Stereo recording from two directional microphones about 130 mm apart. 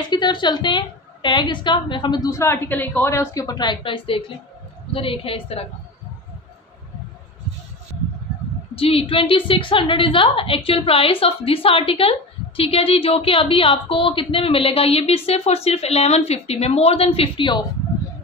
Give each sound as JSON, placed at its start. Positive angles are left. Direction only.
{"t": 0.0, "sound": "a woman's voice", "side_deg": 35}
{"t": 8.7, "sound": "a woman's voice", "side_deg": 45}